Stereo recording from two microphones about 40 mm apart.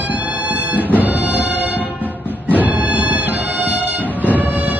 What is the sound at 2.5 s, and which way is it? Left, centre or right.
Music, right.